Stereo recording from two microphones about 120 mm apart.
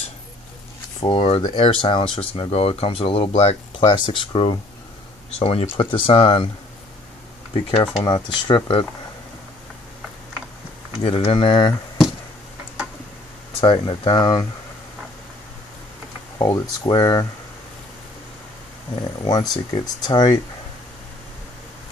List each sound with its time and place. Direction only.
1.0 s speech: 50° left (ahead or behind)
7.5 s speech: 50° left (ahead or behind)
8.0 s speech: 40° left (ahead or behind)
11.0 s speech: 55° left (ahead or behind)
11.3 s speech: 40° left (ahead or behind)
13.6 s speech: 45° left (ahead or behind)
16.3 s speech: 40° left (ahead or behind)
18.9 s speech: 35° left (ahead or behind)